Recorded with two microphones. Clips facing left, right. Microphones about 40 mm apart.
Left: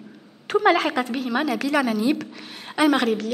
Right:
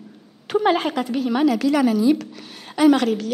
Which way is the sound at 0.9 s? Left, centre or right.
Centre.